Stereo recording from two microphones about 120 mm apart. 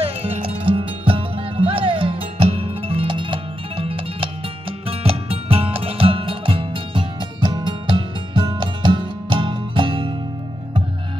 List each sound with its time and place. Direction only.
0.0 s music: 50° right (ahead or behind)